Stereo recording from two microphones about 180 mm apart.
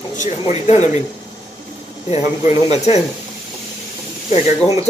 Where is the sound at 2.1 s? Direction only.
35° left (ahead or behind).